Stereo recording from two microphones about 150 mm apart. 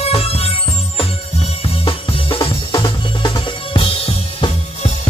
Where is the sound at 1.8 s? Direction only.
35° left (ahead or behind).